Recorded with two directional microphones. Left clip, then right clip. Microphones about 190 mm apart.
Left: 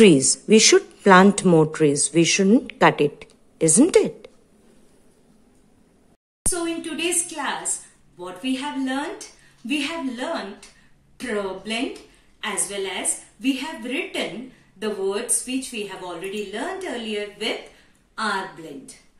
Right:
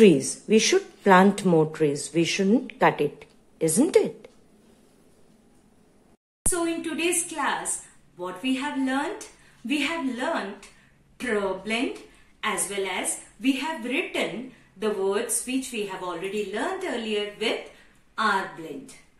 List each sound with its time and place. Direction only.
0.0 s speech: 20° left (ahead or behind)
6.5 s a woman's voice: centre (ahead or behind)
8.5 s a woman's voice: centre (ahead or behind)